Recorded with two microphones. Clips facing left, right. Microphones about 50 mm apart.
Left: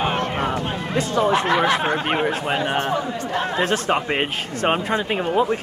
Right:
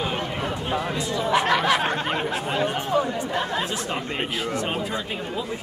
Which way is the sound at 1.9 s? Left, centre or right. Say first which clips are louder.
Left 4 dB; left.